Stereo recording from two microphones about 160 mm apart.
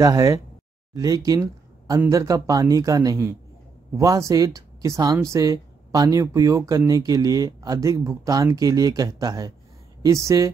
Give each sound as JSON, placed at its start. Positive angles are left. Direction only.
{"t": 0.0, "sound": "speech", "side_deg": -20}